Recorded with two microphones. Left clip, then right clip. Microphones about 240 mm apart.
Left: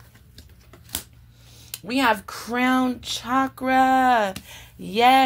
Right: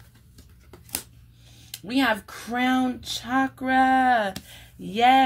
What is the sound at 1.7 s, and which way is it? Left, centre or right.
Speech, left.